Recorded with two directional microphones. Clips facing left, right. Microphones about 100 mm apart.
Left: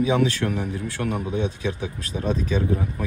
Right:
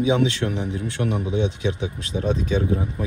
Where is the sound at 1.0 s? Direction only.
45° left (ahead or behind).